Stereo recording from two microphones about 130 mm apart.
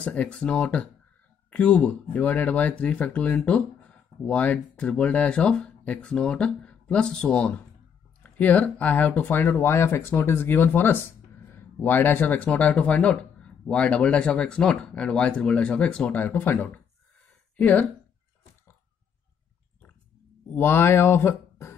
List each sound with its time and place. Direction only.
0.0 s speech: 10° left (ahead or behind)
20.5 s speech: 15° left (ahead or behind)